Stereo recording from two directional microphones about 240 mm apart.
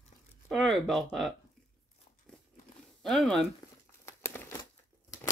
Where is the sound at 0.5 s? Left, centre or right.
Centre.